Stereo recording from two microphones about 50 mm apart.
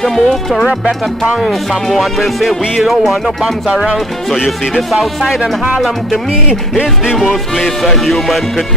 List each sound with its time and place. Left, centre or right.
0.0 s speech: centre
0.7 s music: right
1.4 s speech: centre
7.5 s speech: centre